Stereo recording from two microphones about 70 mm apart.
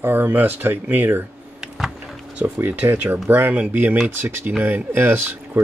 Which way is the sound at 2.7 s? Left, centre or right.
Right.